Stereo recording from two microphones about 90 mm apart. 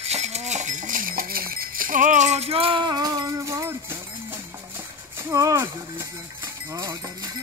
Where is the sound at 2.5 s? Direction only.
90° right.